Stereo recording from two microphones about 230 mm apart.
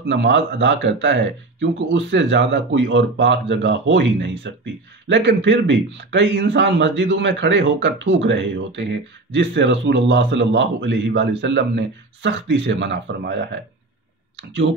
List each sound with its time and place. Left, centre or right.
0.0 s speech: right